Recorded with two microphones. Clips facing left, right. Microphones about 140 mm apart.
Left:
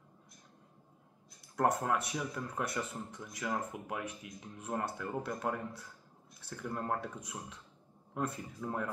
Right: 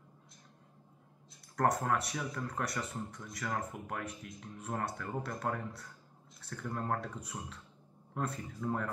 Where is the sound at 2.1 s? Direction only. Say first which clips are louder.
Even; 5° left (ahead or behind).